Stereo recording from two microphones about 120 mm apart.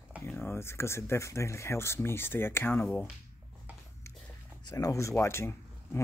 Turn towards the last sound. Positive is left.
turn(degrees=20)  # may be behind; listen again after turning